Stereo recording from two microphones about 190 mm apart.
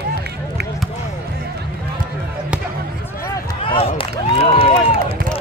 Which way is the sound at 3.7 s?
30° left (ahead or behind).